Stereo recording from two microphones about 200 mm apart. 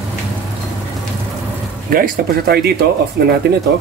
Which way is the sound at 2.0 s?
50° right (ahead or behind).